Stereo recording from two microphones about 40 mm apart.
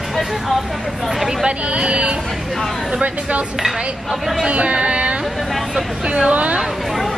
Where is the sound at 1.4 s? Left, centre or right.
Right.